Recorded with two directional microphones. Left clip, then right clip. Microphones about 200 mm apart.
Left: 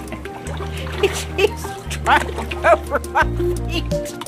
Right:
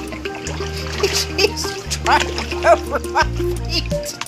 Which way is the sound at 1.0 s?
15° left (ahead or behind).